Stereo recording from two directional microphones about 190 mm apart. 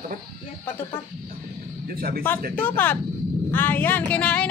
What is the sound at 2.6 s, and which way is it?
Speech, 10° left (ahead or behind).